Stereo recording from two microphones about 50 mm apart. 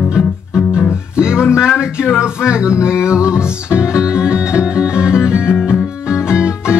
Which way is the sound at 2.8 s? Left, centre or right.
Centre.